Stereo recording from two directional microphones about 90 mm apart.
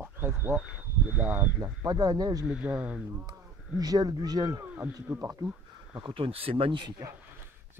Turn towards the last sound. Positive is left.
turn(degrees=-65)  # may be behind; listen again after turning